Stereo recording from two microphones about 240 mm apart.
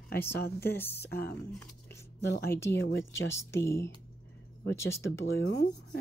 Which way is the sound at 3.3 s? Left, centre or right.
Centre.